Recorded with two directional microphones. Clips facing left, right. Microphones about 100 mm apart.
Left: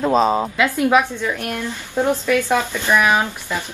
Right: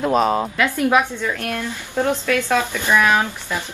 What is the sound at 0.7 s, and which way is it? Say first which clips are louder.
A woman's voice: left 1 dB; 15° left (ahead or behind).